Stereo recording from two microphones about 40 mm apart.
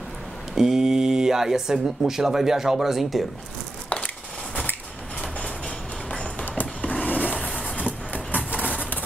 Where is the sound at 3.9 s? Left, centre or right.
Left.